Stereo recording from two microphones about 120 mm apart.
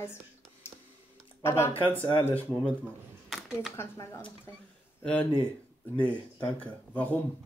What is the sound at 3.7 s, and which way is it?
Speech, 25° left (ahead or behind).